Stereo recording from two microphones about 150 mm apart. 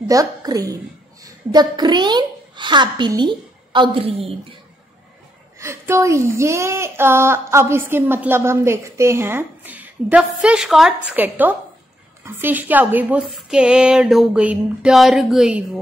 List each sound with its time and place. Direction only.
0.1 s a woman's voice: 25° right (ahead or behind)
5.6 s speech: 20° right (ahead or behind)